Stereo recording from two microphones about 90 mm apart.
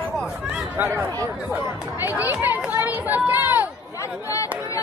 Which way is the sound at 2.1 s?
20° right (ahead or behind).